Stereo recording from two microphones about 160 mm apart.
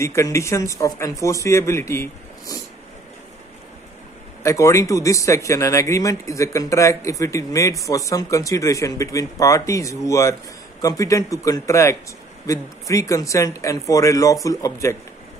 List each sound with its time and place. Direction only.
0.0 s speech: 20° left (ahead or behind)
4.4 s speech: 20° left (ahead or behind)